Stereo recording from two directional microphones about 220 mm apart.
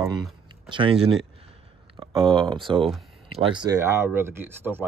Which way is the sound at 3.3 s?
25° right (ahead or behind).